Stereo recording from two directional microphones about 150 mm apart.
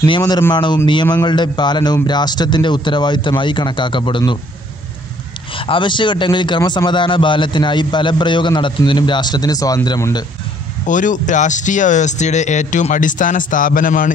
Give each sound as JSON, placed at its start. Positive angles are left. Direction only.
{"t": 0.4, "sound": "a man's voice", "side_deg": 25}
{"t": 5.5, "sound": "a man's voice", "side_deg": 35}
{"t": 10.9, "sound": "speech", "side_deg": 55}